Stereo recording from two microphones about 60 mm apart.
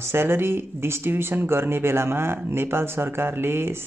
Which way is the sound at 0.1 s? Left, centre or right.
Right.